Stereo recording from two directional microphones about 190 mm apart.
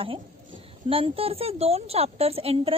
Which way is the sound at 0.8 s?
30° right (ahead or behind).